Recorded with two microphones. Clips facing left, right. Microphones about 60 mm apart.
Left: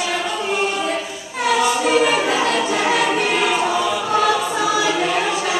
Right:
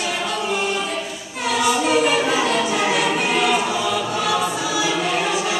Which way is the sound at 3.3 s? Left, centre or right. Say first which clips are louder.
Even; centre.